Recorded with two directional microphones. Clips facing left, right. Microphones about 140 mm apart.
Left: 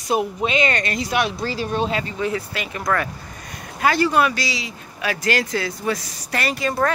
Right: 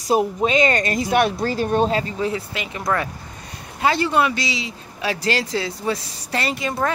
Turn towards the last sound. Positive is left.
turn(degrees=-20)  # may be behind; listen again after turning